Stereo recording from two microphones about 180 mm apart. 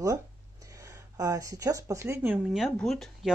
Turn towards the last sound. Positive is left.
turn(degrees=0)  # may be behind; listen again after turning